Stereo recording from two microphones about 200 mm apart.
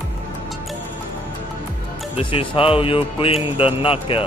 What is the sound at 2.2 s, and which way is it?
Speech, 25° left (ahead or behind).